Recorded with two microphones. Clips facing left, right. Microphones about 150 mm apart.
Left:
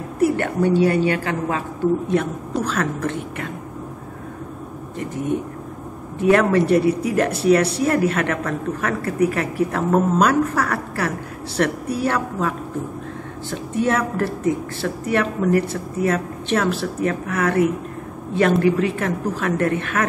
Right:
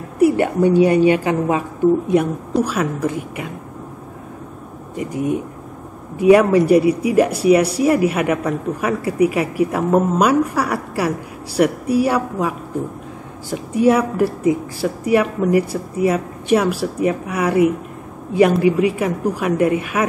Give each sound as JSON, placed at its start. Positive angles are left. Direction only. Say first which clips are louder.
{"t": 0.2, "sound": "speech", "louder": "right 4 dB", "side_deg": -15}
{"t": 2.6, "sound": "speech", "louder": "right 2 dB", "side_deg": -10}
{"t": 6.1, "sound": "speech", "louder": "right 4 dB", "side_deg": -10}